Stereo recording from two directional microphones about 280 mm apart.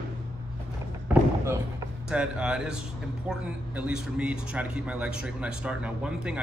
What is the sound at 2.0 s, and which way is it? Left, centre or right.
A man's voice, centre.